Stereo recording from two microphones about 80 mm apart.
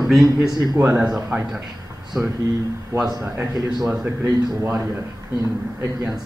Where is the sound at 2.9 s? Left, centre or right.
Right.